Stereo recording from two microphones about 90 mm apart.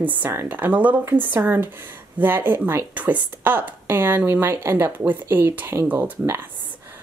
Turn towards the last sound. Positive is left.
turn(degrees=-20)  # may be behind; listen again after turning